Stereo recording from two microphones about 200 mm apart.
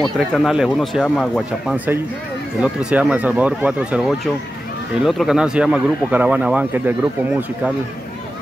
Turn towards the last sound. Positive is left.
turn(degrees=-5)  # may be behind; listen again after turning